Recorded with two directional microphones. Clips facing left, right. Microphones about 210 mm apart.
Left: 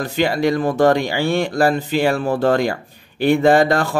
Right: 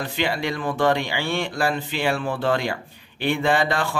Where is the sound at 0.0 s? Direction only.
45° left (ahead or behind).